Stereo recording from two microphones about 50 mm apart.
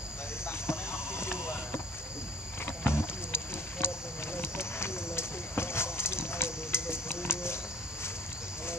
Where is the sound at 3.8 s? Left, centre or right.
Left.